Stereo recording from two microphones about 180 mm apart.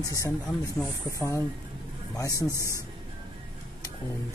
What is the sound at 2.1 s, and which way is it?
Speech, 20° left (ahead or behind).